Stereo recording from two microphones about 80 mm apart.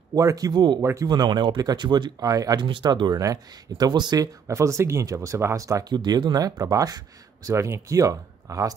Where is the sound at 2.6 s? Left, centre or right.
Right.